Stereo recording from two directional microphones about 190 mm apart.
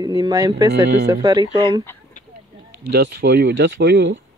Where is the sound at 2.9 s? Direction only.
60° right (ahead or behind).